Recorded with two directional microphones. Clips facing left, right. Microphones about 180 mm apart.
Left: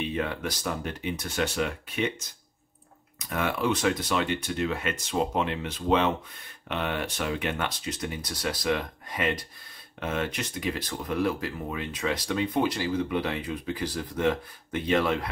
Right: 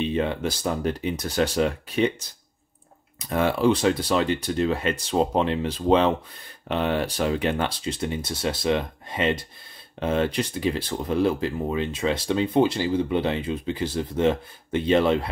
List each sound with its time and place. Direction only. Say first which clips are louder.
0.0 s speech: right 5 dB; 25° right (ahead or behind)